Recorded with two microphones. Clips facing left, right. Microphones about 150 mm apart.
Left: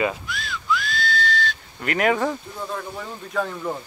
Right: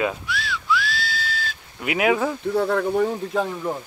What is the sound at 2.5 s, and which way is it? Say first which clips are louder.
Speech: right 11 dB; 70° right (ahead or behind).